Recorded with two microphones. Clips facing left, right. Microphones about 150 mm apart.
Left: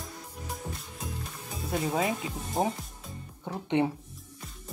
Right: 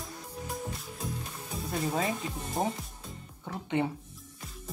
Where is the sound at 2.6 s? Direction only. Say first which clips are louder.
Left 3 dB; 25° left (ahead or behind).